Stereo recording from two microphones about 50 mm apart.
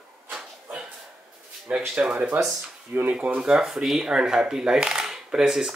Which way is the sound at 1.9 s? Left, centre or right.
Centre.